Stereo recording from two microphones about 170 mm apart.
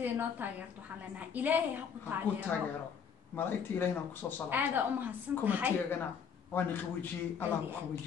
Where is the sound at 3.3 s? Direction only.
10° left (ahead or behind).